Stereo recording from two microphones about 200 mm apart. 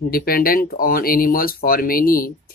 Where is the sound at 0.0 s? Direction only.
45° left (ahead or behind).